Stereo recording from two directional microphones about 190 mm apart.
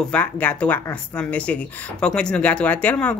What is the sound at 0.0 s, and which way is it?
Speech, 5° left (ahead or behind).